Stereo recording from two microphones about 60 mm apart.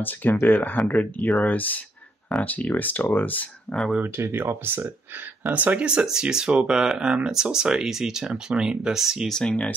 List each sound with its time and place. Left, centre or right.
0.0 s speech: left
3.7 s speech: centre
4.2 s speech: right
5.4 s speech: right
5.9 s speech: centre
9.3 s speech: centre